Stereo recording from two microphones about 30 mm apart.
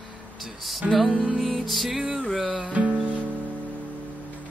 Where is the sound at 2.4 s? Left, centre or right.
Right.